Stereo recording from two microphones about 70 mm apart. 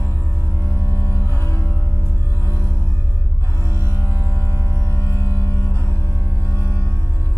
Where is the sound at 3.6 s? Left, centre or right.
Left.